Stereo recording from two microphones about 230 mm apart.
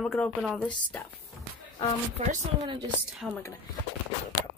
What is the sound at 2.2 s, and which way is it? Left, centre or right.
Speech, right.